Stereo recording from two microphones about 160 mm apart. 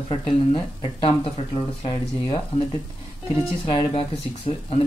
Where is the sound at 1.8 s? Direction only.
35° left (ahead or behind).